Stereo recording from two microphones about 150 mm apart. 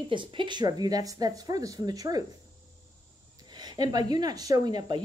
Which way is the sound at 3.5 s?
25° right (ahead or behind).